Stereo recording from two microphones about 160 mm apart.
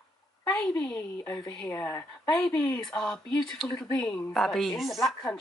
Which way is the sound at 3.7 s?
25° left (ahead or behind).